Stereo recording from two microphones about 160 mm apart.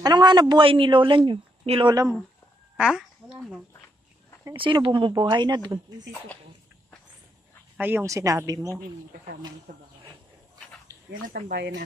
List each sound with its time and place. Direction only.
0.0 s a woman's voice: 25° right (ahead or behind)
2.8 s speech: 5° right (ahead or behind)
4.6 s a woman's voice: 30° right (ahead or behind)
7.7 s a woman's voice: 10° right (ahead or behind)
9.7 s speech: 55° right (ahead or behind)
11.1 s speech: 60° right (ahead or behind); by 11.8 s 90° right